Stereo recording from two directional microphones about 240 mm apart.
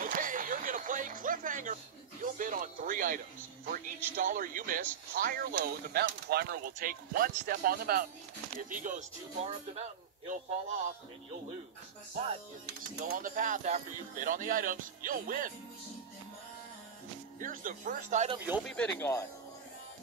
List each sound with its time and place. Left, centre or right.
0.0 s music: right
2.2 s speech: right
4.2 s speech: right
13.0 s speech: right
17.4 s speech: right
18.6 s speech: centre